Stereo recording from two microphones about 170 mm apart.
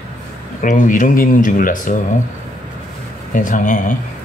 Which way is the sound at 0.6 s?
50° left (ahead or behind).